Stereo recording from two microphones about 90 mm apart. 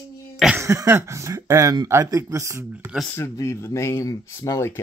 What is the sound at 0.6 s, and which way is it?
Speech, 35° right (ahead or behind).